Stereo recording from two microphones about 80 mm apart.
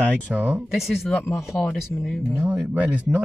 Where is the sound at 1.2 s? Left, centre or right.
Left.